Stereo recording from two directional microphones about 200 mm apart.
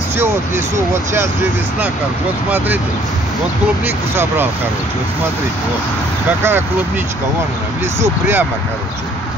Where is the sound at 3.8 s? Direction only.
10° right (ahead or behind).